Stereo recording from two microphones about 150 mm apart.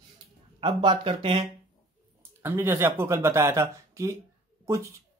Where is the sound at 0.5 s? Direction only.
35° right (ahead or behind).